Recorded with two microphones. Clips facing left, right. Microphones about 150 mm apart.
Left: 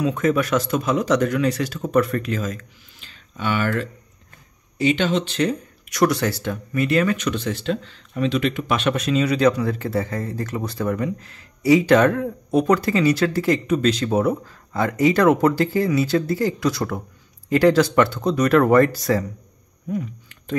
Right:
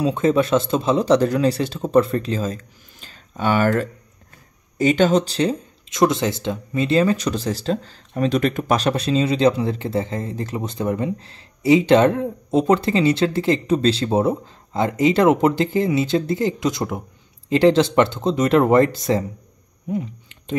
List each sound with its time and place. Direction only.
0.0 s speech: 25° right (ahead or behind)